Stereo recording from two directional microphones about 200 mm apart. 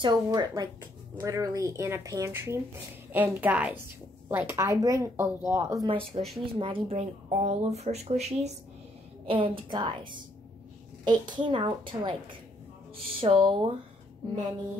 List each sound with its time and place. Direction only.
0.0 s a woman's voice: 20° right (ahead or behind)